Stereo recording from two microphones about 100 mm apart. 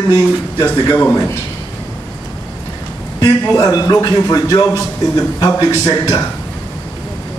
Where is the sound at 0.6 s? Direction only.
10° left (ahead or behind).